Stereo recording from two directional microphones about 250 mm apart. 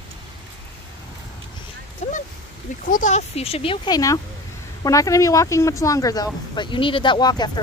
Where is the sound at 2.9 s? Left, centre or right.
Left.